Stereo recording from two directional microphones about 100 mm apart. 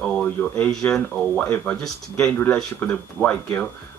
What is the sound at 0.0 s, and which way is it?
Speech, 10° left (ahead or behind).